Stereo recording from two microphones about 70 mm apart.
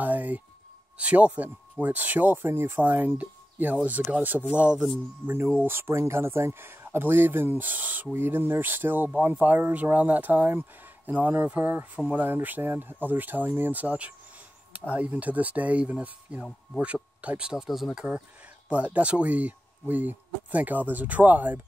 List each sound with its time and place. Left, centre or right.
0.0 s a sound: right
0.9 s speech: centre
5.2 s speech: right
17.5 s speech: centre
17.9 s speech: centre